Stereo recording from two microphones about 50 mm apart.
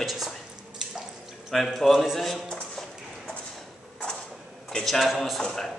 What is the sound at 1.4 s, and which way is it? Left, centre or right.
Speech, centre.